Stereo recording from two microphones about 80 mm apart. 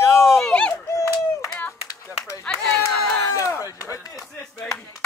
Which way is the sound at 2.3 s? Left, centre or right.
Left.